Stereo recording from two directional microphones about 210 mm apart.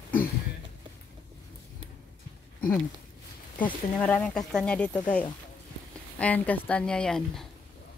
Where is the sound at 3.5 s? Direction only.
5° left (ahead or behind).